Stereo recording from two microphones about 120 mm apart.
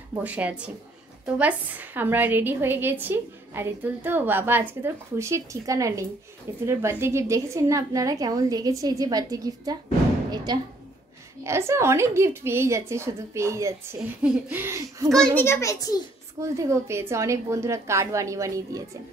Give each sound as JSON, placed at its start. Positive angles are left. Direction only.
{"t": 0.2, "sound": "a woman's voice", "side_deg": -10}
{"t": 11.4, "sound": "a woman's voice", "side_deg": -25}
{"t": 15.3, "sound": "a child's voice", "side_deg": 20}
{"t": 16.3, "sound": "a woman's voice", "side_deg": -25}